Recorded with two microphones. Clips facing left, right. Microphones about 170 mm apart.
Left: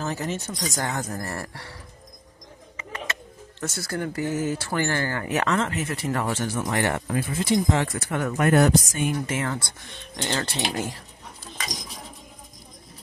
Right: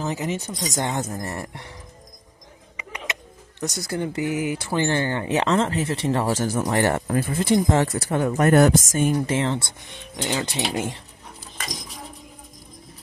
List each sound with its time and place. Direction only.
0.0 s speech: 15° right (ahead or behind)
2.8 s speech: 15° right (ahead or behind)
8.5 s speech: 45° right (ahead or behind)
9.2 s speech: 30° right (ahead or behind)
10.1 s speech: 10° right (ahead or behind)